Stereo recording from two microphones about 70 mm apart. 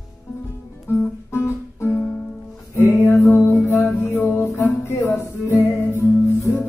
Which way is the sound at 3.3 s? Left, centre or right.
Left.